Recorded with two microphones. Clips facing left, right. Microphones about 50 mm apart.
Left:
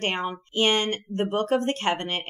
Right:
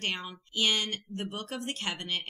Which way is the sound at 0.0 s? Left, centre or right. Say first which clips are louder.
Left 8 dB; left.